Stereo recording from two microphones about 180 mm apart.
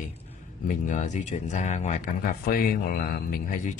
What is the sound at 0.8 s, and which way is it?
Speech, 45° left (ahead or behind).